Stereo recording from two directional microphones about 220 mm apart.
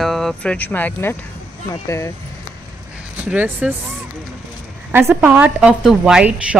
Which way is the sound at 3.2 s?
5° right (ahead or behind).